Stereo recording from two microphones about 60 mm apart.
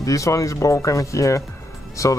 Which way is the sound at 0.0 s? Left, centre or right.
Left.